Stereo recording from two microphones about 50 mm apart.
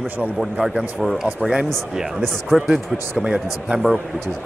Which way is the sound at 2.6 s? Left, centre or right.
Centre.